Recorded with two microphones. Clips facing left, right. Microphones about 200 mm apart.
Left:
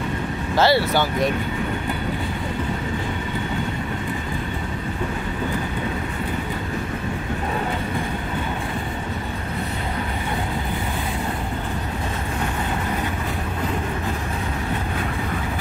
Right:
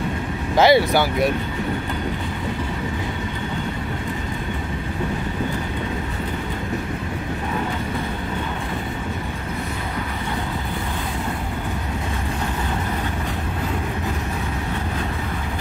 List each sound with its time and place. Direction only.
0.6 s speech: 15° right (ahead or behind)